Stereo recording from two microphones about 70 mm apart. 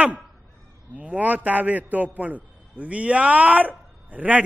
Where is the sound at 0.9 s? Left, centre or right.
Right.